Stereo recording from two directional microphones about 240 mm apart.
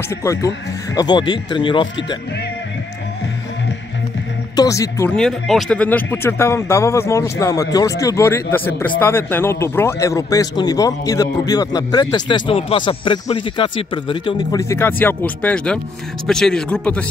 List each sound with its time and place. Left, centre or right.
0.1 s speech: centre
4.6 s speech: centre